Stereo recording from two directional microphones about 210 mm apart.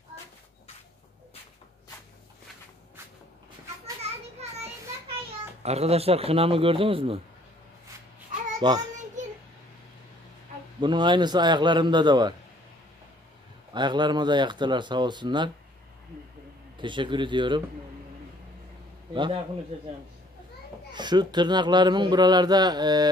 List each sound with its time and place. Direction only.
4.0 s children playing: 30° right (ahead or behind)
5.6 s a man's voice: 30° right (ahead or behind)
8.5 s speech: 20° right (ahead or behind)
10.8 s a man's voice: 20° right (ahead or behind)
13.7 s a man's voice: 20° right (ahead or behind)
16.7 s a man's voice: 20° right (ahead or behind)
20.9 s a man's voice: 20° right (ahead or behind)